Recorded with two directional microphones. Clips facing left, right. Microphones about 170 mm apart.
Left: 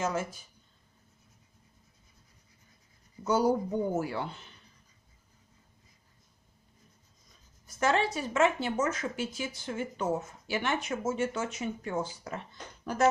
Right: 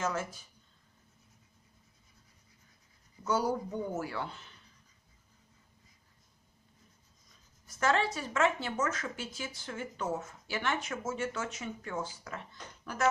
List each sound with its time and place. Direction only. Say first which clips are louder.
0.0 s speech: left 3 dB; 15° left (ahead or behind)
3.3 s speech: left 5 dB; 20° left (ahead or behind)
7.8 s speech: left 2 dB; 15° left (ahead or behind)